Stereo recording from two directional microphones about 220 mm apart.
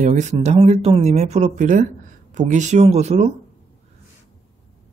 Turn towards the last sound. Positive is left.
turn(degrees=-30)  # may be behind; listen again after turning